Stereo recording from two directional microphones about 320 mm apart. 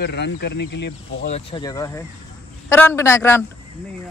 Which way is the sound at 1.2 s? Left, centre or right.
Centre.